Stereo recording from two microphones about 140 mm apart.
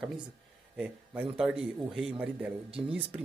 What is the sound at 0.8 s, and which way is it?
A man's voice, 10° right (ahead or behind).